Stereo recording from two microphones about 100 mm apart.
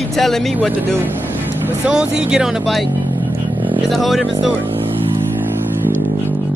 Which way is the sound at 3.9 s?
Centre (ahead or behind).